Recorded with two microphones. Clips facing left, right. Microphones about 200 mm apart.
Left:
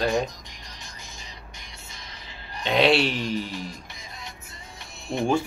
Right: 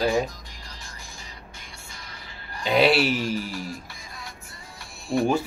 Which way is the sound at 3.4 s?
20° left (ahead or behind).